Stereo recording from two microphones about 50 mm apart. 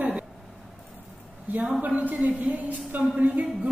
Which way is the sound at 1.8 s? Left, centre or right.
Right.